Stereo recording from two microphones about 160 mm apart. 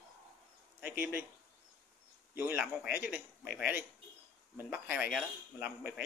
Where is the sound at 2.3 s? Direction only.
15° right (ahead or behind).